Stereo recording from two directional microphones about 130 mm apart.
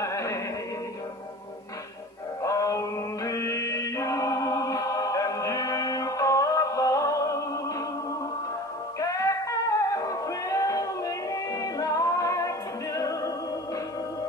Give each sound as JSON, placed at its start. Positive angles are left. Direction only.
{"t": 0.0, "sound": "music", "side_deg": 25}
{"t": 2.4, "sound": "music", "side_deg": 25}
{"t": 9.0, "sound": "music", "side_deg": 25}